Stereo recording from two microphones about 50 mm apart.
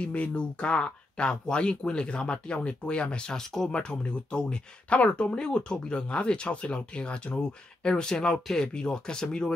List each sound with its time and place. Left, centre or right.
0.0 s speech: left